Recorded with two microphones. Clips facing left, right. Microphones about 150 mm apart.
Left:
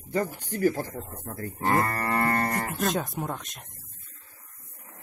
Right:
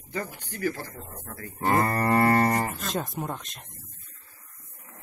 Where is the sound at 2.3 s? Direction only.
15° right (ahead or behind).